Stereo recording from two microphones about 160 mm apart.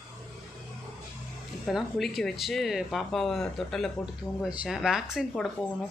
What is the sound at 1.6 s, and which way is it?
Speech, centre (ahead or behind).